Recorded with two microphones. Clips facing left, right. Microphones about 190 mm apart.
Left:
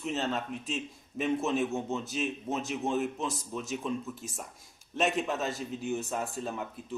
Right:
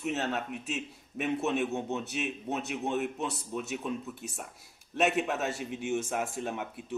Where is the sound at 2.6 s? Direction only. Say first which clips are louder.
Left 2 dB; 65° right (ahead or behind).